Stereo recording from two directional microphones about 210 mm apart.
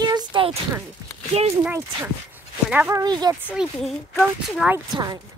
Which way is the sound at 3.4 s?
5° right (ahead or behind).